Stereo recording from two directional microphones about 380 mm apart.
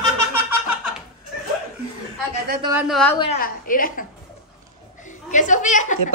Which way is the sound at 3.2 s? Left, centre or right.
Left.